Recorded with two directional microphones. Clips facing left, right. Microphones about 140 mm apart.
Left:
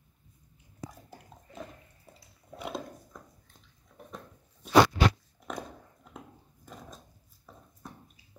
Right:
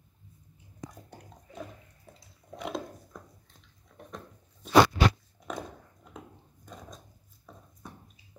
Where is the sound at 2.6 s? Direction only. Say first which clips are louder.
Right 2 dB; centre (ahead or behind).